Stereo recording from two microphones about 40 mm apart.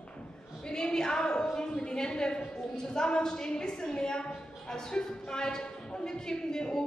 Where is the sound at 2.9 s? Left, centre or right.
Left.